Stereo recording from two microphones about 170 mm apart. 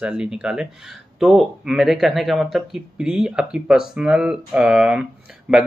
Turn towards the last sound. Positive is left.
turn(degrees=-5)  # may be behind; listen again after turning